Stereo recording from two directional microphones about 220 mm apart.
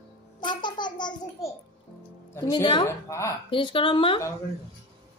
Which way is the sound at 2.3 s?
15° left (ahead or behind).